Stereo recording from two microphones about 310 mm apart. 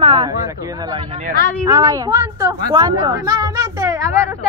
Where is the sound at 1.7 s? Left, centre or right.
Centre.